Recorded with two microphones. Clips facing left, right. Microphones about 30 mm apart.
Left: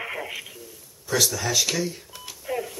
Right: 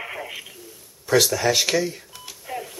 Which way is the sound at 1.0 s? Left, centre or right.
Right.